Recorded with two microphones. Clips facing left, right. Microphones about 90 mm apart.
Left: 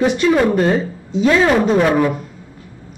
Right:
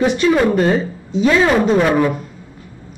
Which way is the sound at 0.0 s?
Centre (ahead or behind).